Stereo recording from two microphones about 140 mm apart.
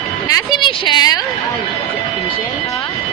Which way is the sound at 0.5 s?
35° left (ahead or behind).